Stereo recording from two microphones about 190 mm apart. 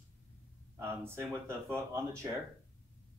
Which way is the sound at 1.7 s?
15° right (ahead or behind).